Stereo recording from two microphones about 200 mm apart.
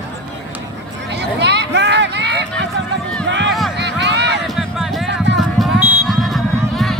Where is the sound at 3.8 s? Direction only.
60° right (ahead or behind).